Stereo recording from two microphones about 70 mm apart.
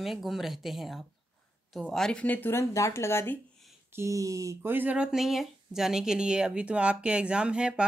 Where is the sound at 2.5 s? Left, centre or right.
Left.